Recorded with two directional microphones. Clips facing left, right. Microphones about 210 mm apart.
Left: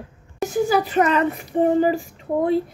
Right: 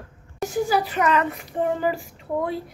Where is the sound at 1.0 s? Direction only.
30° left (ahead or behind).